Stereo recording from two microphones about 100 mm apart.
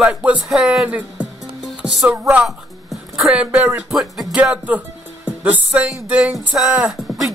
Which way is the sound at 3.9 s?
Centre (ahead or behind).